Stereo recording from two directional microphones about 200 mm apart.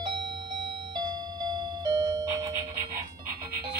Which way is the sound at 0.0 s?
25° right (ahead or behind).